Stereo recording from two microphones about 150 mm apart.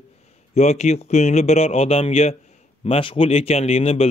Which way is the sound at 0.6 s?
45° left (ahead or behind).